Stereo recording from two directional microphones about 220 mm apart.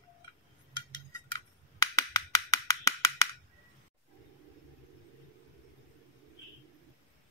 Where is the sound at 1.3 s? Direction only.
15° left (ahead or behind).